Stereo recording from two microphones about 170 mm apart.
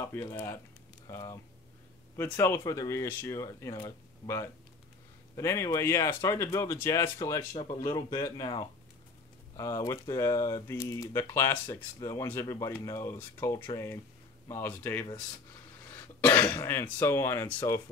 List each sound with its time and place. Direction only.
0.0 s speech: 15° left (ahead or behind)
16.2 s speech: 10° left (ahead or behind)